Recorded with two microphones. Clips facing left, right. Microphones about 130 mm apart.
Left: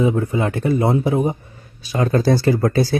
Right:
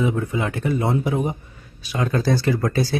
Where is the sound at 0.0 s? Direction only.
35° left (ahead or behind).